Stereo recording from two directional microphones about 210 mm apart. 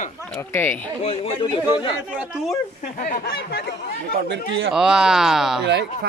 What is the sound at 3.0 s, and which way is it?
Speech, 40° left (ahead or behind).